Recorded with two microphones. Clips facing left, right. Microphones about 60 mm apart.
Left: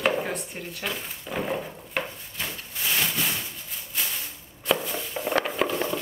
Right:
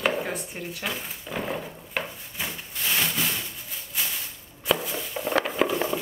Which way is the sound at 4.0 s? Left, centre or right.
Centre.